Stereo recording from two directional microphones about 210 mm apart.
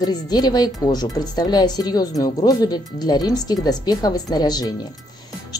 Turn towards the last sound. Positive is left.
turn(degrees=20)  # may be behind; listen again after turning